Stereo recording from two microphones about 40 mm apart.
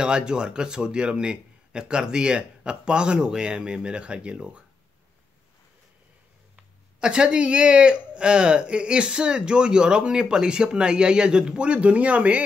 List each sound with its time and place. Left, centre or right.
0.0 s speech: right
6.5 s speech: right